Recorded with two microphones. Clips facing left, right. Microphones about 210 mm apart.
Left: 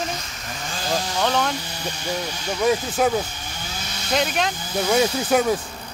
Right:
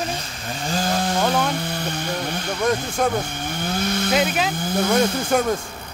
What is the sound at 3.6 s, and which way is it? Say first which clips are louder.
Chainsaw: right 14 dB; 55° right (ahead or behind).